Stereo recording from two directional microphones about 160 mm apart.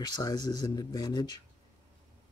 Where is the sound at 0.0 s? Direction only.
25° left (ahead or behind).